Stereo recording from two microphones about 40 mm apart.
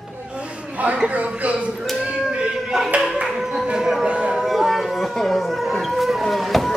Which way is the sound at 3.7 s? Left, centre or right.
Centre.